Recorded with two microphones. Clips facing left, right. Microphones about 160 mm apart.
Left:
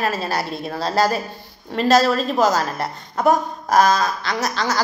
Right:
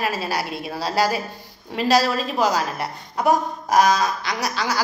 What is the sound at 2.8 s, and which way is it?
Speech, 45° left (ahead or behind).